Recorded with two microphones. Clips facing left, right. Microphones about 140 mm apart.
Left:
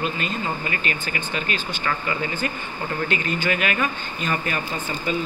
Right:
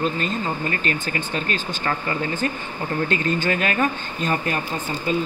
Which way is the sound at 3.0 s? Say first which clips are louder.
Right 2 dB; 45° right (ahead or behind).